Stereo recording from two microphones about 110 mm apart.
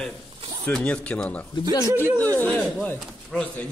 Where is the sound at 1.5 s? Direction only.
40° left (ahead or behind).